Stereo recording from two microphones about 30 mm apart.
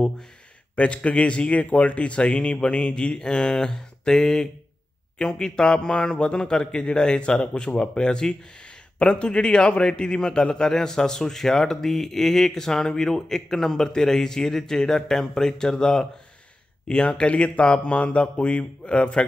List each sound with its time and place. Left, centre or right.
0.7 s speech: left
1.5 s a man's voice: left; by 16.1 s centre
16.8 s speech: left